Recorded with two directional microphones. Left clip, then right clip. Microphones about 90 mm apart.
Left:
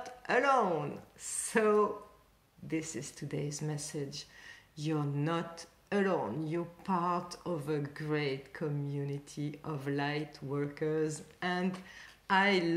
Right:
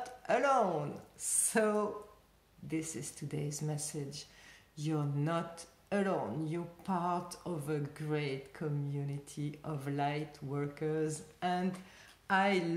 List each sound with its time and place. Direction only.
0.0 s speech: 30° right (ahead or behind)
1.5 s speech: 30° right (ahead or behind)